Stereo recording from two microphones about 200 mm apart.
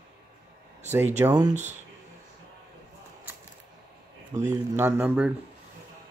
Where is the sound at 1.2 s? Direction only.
20° right (ahead or behind).